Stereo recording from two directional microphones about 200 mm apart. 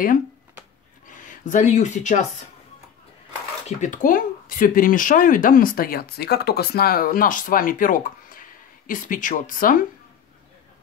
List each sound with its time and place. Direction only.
1.0 s speech: 40° left (ahead or behind)
3.6 s speech: 40° left (ahead or behind)